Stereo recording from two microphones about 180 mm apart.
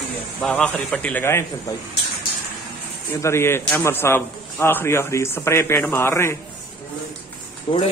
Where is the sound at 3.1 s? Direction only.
15° left (ahead or behind).